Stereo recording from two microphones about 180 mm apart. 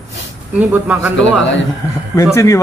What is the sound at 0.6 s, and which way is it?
Speech, 10° right (ahead or behind).